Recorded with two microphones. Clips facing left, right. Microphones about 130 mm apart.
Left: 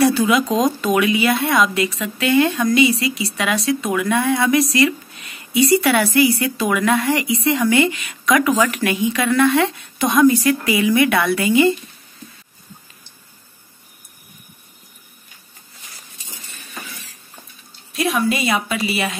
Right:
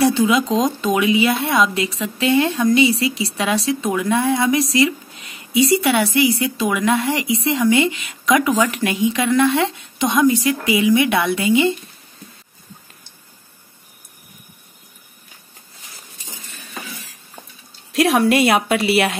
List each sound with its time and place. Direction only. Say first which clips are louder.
0.0 s speech: even; 25° right (ahead or behind)
0.5 s speech: left 1 dB; 5° left (ahead or behind)
0.9 s speech: right 2 dB; 25° right (ahead or behind)
17.9 s a woman's voice: right 5 dB; 85° right; by 19.1 s 70° right (ahead or behind)